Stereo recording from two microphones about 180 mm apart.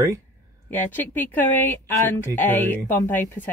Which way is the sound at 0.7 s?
10° left (ahead or behind).